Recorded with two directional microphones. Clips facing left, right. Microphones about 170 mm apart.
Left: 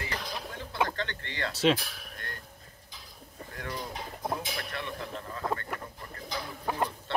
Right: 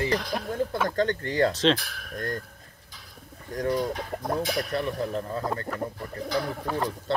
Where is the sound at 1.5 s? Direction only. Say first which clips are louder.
Right 2 dB; 10° left (ahead or behind).